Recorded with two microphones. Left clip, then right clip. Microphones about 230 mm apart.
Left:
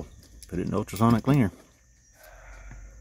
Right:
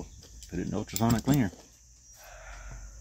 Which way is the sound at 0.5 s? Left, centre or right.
Left.